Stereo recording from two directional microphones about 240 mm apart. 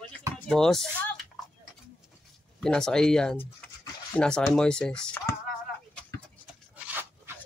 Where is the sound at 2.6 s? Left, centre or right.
Centre.